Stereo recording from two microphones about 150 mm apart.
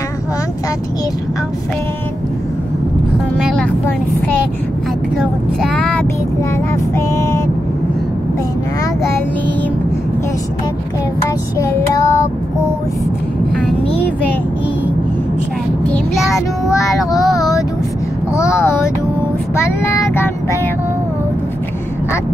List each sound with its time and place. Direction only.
5.1 s vehicle: 5° left (ahead or behind)
11.5 s child singing: 20° left (ahead or behind)
13.6 s vehicle: 5° left (ahead or behind)
16.7 s child singing: 20° left (ahead or behind)
18.3 s a sound: 20° left (ahead or behind)
19.5 s child singing: 20° left (ahead or behind)